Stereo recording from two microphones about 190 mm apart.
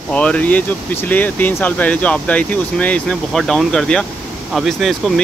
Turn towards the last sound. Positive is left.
turn(degrees=0)  # may be behind; listen again after turning